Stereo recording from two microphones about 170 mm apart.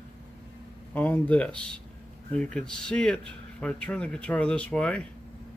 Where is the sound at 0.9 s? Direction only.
10° left (ahead or behind).